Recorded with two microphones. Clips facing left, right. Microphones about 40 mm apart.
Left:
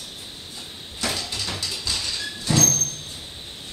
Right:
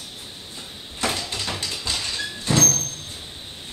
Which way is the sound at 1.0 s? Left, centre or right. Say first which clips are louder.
Right 2 dB; centre.